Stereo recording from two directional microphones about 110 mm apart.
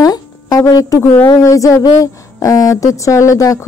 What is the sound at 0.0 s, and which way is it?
A woman's voice, 35° left (ahead or behind).